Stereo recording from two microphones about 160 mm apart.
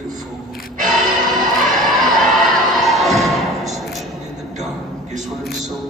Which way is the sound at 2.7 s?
Centre (ahead or behind).